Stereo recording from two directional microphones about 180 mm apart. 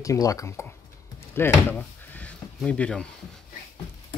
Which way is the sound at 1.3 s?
10° left (ahead or behind).